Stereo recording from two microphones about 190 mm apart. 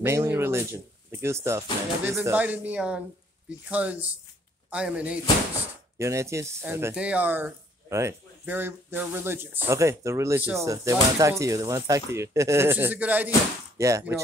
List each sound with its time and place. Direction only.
0.0 s speech: 15° right (ahead or behind)